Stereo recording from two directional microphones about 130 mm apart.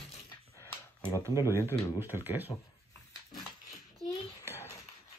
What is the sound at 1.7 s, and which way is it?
Speech, 15° right (ahead or behind).